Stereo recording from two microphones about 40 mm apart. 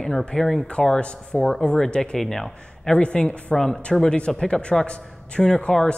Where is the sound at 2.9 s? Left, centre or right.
Left.